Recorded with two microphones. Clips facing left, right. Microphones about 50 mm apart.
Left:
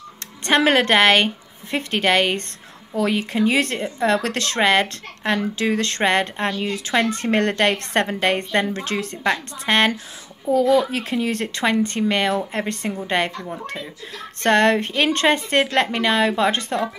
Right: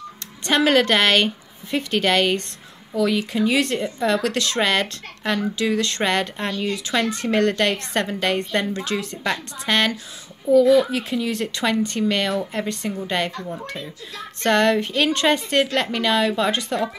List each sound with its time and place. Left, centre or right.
0.4 s a woman's voice: left
14.4 s speech: left